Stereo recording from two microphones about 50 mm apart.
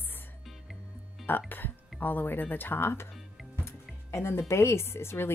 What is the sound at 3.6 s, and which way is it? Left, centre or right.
Music, left.